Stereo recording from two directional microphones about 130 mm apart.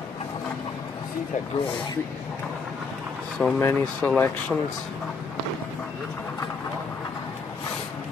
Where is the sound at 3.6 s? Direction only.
15° left (ahead or behind).